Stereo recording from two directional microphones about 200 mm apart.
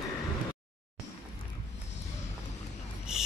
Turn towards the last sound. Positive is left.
turn(degrees=-5)  # may be behind; listen again after turning